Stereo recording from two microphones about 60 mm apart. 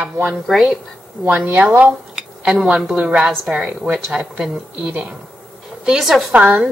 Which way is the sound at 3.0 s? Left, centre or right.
Centre.